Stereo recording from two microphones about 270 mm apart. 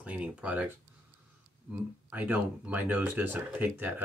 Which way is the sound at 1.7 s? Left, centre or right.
Centre.